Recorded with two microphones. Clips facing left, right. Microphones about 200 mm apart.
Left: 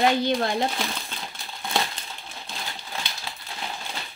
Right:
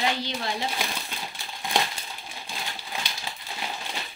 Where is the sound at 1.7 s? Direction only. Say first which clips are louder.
Even; 10° right (ahead or behind).